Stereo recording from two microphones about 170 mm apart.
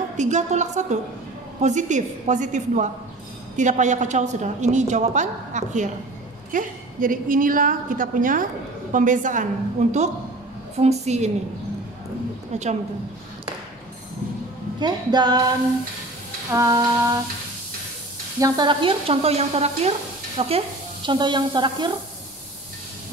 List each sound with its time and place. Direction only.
0.2 s a woman's voice: 45° right (ahead or behind)
10.8 s sizzle: 40° right (ahead or behind)
14.8 s a sound: 25° right (ahead or behind)
16.4 s a sound: 20° right (ahead or behind)
18.4 s sizzle: 25° right (ahead or behind)
20.3 s stir: 35° right (ahead or behind)